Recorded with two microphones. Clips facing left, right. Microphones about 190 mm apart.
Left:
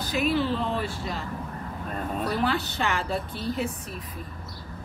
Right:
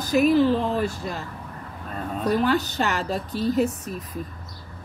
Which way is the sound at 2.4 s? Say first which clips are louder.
Right 4 dB; 40° right (ahead or behind).